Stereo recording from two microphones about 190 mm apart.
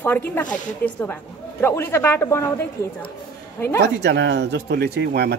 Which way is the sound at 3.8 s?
65° right (ahead or behind).